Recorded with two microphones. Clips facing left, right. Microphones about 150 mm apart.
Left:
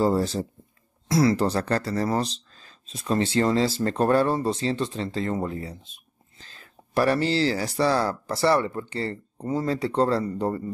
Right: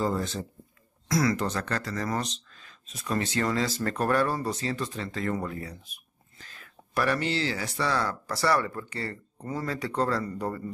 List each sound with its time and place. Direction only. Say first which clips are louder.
0.0 s speech: left 6 dB; 35° left (ahead or behind)